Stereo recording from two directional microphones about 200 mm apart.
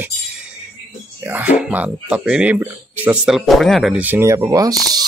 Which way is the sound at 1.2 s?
10° right (ahead or behind).